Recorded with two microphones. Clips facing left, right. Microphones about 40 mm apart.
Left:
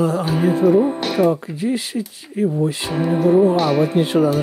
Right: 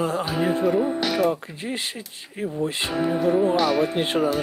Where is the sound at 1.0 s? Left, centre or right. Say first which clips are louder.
Left 5 dB; left.